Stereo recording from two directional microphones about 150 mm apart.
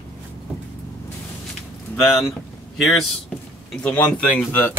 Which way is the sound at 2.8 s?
Centre (ahead or behind).